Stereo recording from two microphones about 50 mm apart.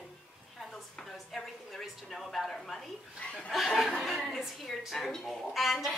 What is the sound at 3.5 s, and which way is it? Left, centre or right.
A woman's voice, centre.